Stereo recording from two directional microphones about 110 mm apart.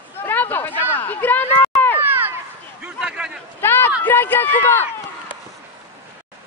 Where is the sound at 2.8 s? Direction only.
10° right (ahead or behind).